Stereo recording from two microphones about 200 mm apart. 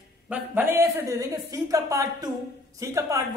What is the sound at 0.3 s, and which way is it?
A man's voice, 10° right (ahead or behind).